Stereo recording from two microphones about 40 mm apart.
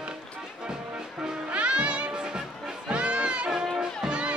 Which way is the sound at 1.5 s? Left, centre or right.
Right.